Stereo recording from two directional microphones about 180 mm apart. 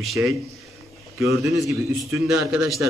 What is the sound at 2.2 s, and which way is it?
Speech, centre (ahead or behind).